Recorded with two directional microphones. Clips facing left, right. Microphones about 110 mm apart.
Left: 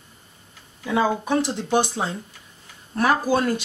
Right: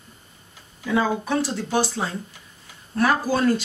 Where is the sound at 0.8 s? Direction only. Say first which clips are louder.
Left 1 dB; 20° left (ahead or behind).